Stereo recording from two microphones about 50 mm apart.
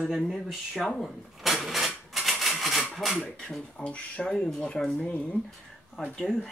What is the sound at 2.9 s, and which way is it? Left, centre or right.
Speech, centre.